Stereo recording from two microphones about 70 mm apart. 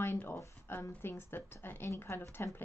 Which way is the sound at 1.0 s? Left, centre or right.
Left.